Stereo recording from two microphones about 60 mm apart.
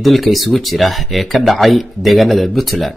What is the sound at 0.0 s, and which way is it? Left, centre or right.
Speech, centre.